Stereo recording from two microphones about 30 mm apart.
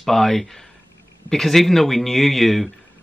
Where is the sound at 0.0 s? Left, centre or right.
Centre.